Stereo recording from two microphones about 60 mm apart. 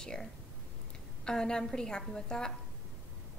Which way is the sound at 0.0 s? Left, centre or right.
Centre.